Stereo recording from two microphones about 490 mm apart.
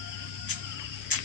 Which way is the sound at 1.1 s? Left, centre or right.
Left.